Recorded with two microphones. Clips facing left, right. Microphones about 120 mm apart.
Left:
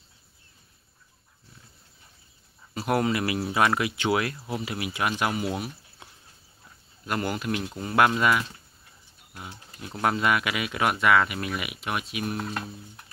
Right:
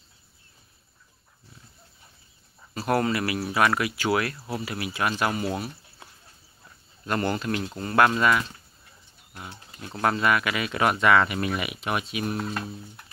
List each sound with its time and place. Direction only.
2.7 s speech: 15° left (ahead or behind)
7.1 s speech: 10° left (ahead or behind)
9.8 s speech: 15° left (ahead or behind)